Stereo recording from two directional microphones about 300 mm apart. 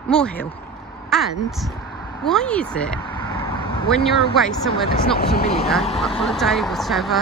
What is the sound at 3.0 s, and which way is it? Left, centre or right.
Vehicle, centre.